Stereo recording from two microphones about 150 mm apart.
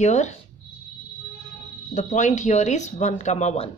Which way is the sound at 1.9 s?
55° left (ahead or behind).